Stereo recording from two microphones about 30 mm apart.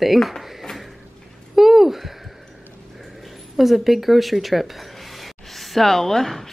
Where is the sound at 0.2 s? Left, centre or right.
Centre.